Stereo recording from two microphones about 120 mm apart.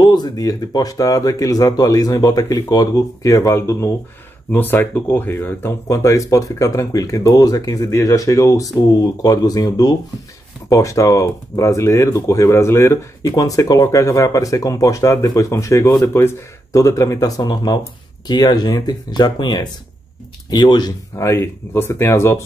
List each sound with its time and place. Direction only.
0.0 s speech: 35° left (ahead or behind)
21.3 s speech: 20° left (ahead or behind)